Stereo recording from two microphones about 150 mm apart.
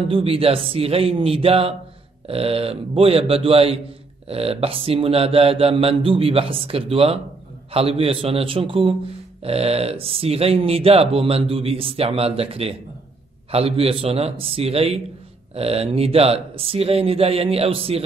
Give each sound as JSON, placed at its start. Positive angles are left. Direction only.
{"t": 0.1, "sound": "speech", "side_deg": -40}